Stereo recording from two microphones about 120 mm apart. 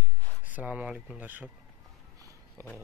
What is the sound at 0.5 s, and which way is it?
Speech, 10° right (ahead or behind).